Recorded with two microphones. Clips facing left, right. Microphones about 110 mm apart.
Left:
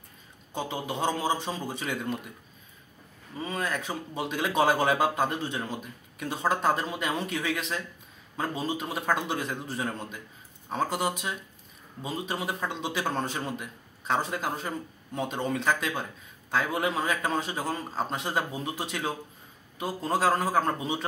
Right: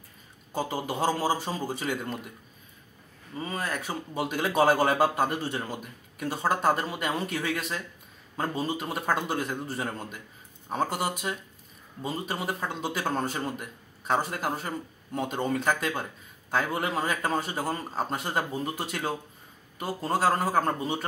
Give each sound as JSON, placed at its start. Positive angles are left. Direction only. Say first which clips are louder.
{"t": 0.5, "sound": "speech", "louder": "right 2 dB", "side_deg": -5}
{"t": 3.3, "sound": "speech", "louder": "left 1 dB", "side_deg": 0}